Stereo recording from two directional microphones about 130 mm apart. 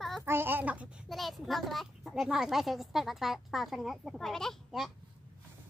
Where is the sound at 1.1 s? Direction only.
Centre (ahead or behind).